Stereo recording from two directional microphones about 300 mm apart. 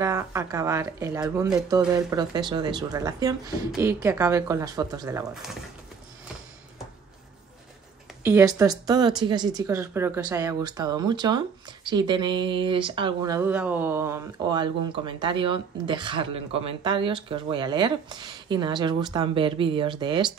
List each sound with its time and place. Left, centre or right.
0.0 s speech: centre
8.2 s speech: centre